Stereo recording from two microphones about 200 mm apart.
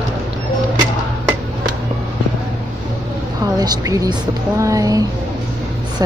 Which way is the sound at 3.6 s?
20° right (ahead or behind).